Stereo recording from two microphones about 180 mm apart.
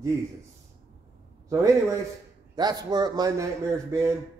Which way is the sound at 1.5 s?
15° right (ahead or behind).